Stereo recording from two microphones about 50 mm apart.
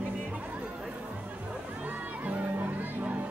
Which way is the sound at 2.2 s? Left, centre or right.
Right.